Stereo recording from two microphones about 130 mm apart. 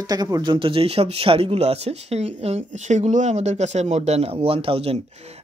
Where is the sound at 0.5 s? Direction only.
45° right (ahead or behind).